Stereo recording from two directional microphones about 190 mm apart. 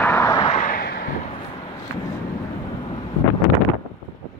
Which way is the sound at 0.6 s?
50° left (ahead or behind).